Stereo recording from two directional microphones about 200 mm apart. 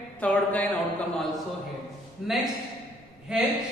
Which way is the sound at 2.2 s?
Centre (ahead or behind).